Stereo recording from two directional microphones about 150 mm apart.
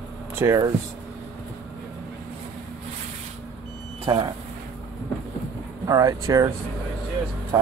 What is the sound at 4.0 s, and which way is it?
Speech, 30° right (ahead or behind).